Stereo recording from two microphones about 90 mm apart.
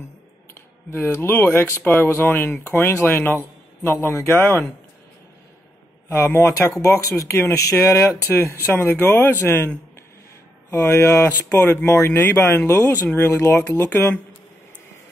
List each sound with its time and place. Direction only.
0.8 s speech: 25° left (ahead or behind)
6.0 s speech: 25° left (ahead or behind)
10.7 s speech: 30° left (ahead or behind)
12.6 s speech: 35° left (ahead or behind)
13.0 s speech: 20° left (ahead or behind)